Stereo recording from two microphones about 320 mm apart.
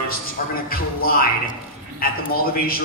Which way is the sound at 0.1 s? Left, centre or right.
Left.